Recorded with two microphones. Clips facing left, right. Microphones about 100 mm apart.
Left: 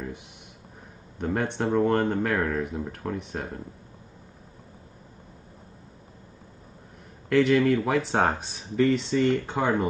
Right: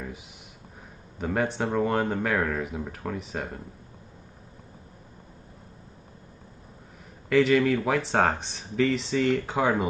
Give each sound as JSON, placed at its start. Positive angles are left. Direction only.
{"t": 1.1, "sound": "speech", "side_deg": 0}
{"t": 7.2, "sound": "speech", "side_deg": 0}